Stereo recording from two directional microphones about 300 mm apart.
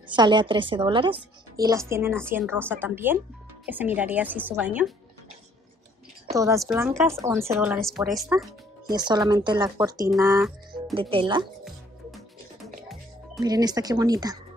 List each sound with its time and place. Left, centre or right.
0.1 s a woman's voice: centre
6.3 s a woman's voice: centre
8.8 s a woman's voice: centre
10.2 s music: centre
11.0 s a woman's voice: centre
13.4 s a woman's voice: centre